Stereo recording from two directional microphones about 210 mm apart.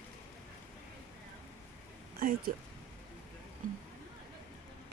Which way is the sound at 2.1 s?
45° right (ahead or behind).